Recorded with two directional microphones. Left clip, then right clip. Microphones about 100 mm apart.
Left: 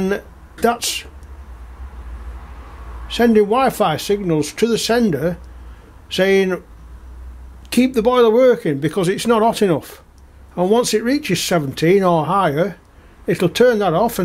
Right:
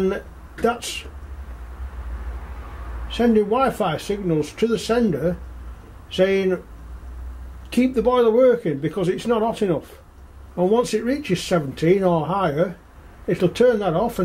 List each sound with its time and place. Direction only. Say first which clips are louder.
0.0 s speech: left 2 dB; 35° left (ahead or behind)
3.1 s speech: left 5 dB; 35° left (ahead or behind)
7.7 s speech: left 4 dB; 40° left (ahead or behind)